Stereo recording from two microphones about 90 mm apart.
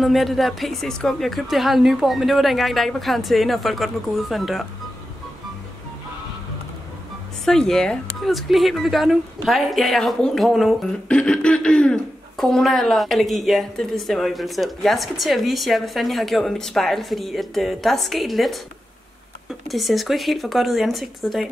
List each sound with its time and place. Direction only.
0.0 s a woman's voice: centre (ahead or behind)
7.4 s a woman's voice: 5° left (ahead or behind)
19.7 s a woman's voice: centre (ahead or behind)